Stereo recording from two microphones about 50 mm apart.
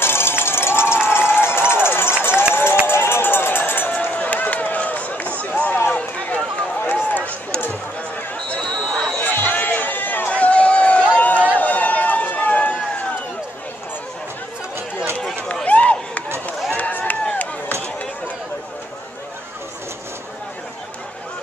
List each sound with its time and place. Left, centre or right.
0.0 s run: left
3.9 s run: left
6.8 s run: left
8.5 s basketball bounce: left
8.8 s chatter: centre
9.2 s run: left
10.3 s run: left
15.6 s run: left